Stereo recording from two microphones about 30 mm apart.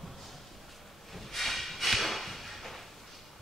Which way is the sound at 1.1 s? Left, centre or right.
Centre.